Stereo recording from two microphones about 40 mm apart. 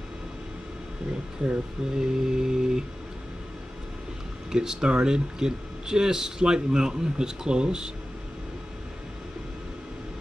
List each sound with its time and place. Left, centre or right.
1.4 s speech: centre
4.5 s speech: centre